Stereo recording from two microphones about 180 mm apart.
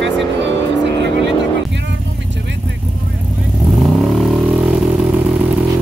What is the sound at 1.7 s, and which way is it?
Vehicle, 80° right.